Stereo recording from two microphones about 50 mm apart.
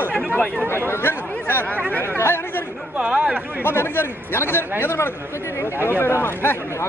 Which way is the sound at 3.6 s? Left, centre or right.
Left.